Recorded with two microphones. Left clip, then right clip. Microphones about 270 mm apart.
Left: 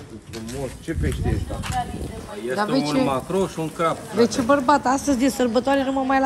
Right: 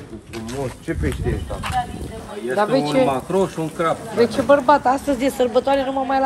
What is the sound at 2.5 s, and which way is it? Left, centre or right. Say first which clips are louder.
Speech: right 4 dB; centre.